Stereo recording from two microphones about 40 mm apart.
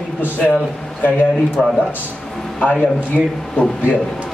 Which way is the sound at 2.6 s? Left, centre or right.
Left.